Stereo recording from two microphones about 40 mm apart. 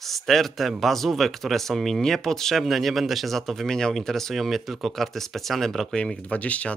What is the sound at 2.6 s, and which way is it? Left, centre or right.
Speech, centre.